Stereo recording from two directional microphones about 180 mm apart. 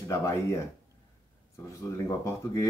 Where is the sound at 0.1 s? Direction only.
15° left (ahead or behind).